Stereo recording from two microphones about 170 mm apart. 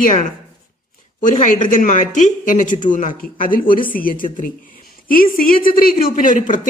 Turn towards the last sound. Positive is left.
turn(degrees=45)  # may be behind; listen again after turning